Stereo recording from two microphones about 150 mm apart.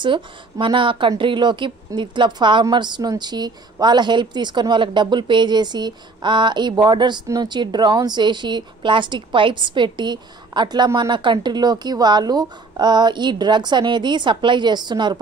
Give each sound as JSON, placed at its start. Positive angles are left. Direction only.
{"t": 0.0, "sound": "a woman's voice", "side_deg": -35}